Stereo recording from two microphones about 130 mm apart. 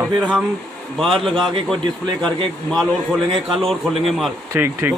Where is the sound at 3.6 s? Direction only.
Centre (ahead or behind).